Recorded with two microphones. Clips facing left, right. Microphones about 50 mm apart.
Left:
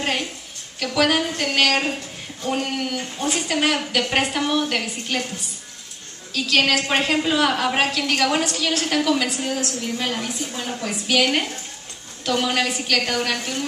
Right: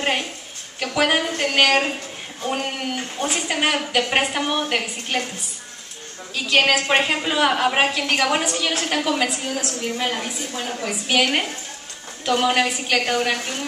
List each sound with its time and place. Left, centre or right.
0.0 s a sound: centre
0.7 s a woman's voice: centre
6.3 s a woman's voice: centre
11.1 s a woman's voice: centre